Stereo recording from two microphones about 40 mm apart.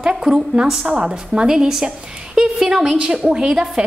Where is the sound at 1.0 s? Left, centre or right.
Right.